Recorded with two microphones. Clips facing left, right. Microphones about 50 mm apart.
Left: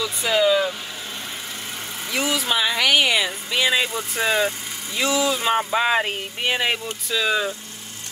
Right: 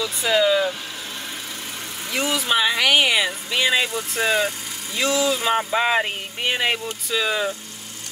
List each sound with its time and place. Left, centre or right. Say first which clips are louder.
0.0 s speech: even; centre
2.1 s speech: right 1 dB; centre
4.1 s speech: even; left
4.9 s speech: even; centre